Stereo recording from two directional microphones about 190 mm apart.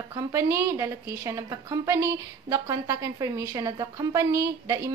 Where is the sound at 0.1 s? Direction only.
15° right (ahead or behind).